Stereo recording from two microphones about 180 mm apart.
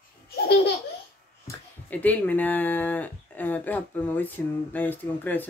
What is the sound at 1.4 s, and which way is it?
Speech, 10° left (ahead or behind).